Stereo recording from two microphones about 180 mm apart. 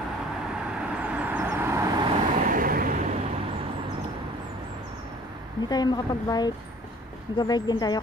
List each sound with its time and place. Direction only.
0.8 s vehicle: 5° right (ahead or behind)
2.4 s vehicle: 50° right (ahead or behind)
5.7 s a woman's voice: 20° left (ahead or behind)